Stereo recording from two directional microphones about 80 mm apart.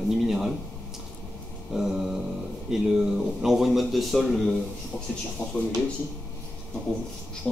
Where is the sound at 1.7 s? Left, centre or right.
Centre.